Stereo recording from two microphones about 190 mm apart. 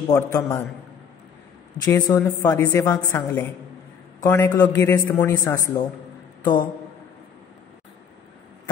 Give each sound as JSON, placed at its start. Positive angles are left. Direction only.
{"t": 0.1, "sound": "a man's voice", "side_deg": 15}
{"t": 1.8, "sound": "a woman's voice", "side_deg": 20}